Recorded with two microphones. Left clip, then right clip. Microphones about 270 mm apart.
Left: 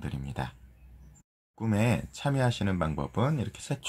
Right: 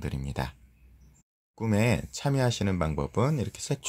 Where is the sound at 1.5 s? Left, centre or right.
Right.